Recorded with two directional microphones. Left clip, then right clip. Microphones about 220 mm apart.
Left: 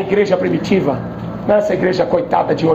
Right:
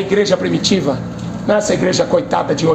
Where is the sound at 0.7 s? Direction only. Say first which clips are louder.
Left 1 dB; 15° right (ahead or behind).